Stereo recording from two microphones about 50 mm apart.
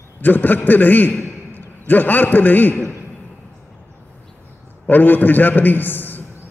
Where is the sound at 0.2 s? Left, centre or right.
Left.